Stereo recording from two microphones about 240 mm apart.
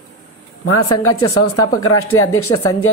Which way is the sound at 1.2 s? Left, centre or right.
Left.